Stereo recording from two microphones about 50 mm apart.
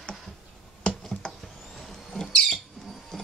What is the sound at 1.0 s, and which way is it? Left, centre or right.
Rodents, centre.